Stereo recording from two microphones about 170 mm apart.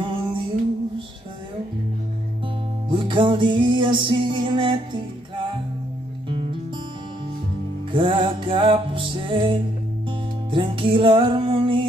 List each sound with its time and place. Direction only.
0.0 s music: 30° right (ahead or behind)
2.9 s music: 30° right (ahead or behind)
7.9 s music: 25° right (ahead or behind)